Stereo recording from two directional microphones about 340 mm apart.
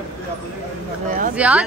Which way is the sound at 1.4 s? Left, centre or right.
Centre.